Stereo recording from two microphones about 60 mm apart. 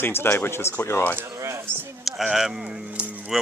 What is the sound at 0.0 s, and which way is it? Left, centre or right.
Speech, left.